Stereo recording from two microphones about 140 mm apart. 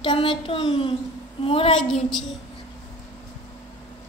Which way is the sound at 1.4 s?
40° left (ahead or behind).